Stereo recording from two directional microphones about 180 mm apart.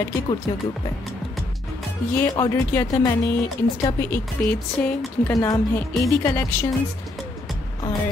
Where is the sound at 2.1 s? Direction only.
20° left (ahead or behind).